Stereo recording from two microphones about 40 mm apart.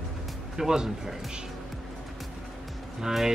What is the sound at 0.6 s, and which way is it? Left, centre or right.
Speech, centre.